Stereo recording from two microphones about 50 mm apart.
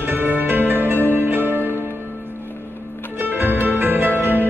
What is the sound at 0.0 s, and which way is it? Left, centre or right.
Music, right.